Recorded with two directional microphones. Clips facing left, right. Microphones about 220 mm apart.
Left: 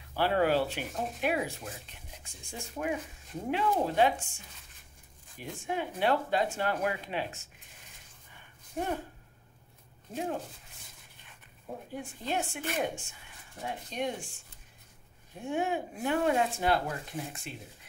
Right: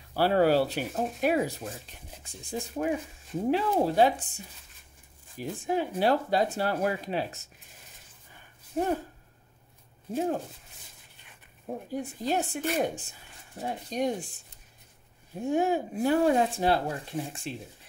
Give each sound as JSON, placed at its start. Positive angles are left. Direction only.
{"t": 0.1, "sound": "speech", "side_deg": -40}
{"t": 5.4, "sound": "speech", "side_deg": -35}
{"t": 8.8, "sound": "speech", "side_deg": -35}
{"t": 11.9, "sound": "speech", "side_deg": -40}
{"t": 15.4, "sound": "speech", "side_deg": -40}